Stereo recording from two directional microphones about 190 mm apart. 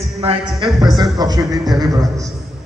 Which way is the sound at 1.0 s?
20° right (ahead or behind).